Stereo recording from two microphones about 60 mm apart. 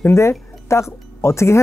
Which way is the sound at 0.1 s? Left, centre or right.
Left.